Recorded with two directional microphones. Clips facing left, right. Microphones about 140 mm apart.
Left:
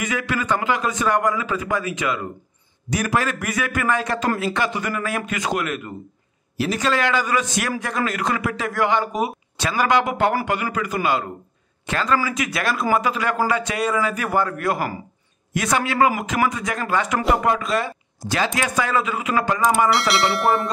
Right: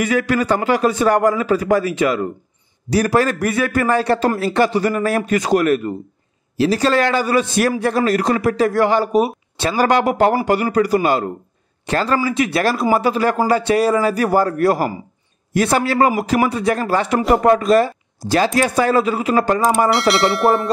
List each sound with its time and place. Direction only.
0.0 s a man's voice: 40° right (ahead or behind)
19.9 s speech: centre (ahead or behind)